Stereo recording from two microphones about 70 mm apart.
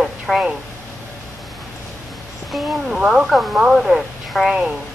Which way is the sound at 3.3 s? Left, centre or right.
Centre.